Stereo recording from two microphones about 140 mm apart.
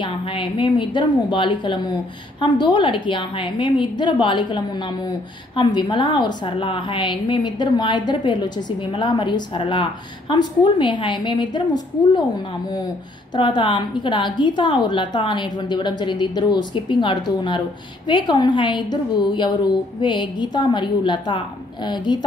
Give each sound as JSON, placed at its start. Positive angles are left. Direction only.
{"t": 0.0, "sound": "a woman's voice", "side_deg": 35}
{"t": 13.4, "sound": "a woman's voice", "side_deg": 35}